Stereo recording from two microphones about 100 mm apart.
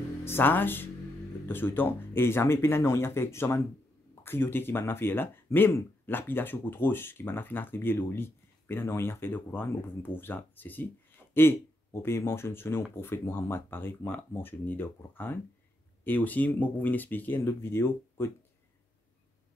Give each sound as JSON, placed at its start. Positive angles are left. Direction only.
{"t": 0.2, "sound": "speech", "side_deg": 20}